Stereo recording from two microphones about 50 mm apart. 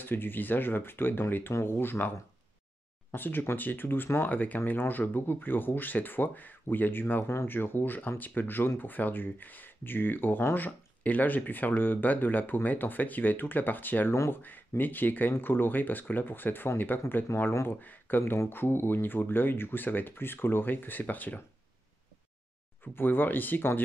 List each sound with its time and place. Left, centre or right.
0.0 s speech: left
17.8 s speech: left
18.2 s speech: left
22.9 s speech: left